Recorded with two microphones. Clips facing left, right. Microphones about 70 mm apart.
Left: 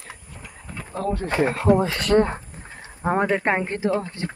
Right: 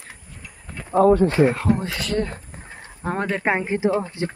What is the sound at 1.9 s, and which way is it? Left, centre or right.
Speech, left.